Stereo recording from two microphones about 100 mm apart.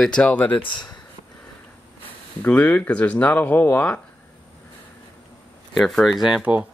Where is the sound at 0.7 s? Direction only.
50° left (ahead or behind).